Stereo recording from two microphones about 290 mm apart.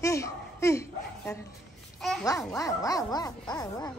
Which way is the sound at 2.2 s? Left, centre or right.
Centre.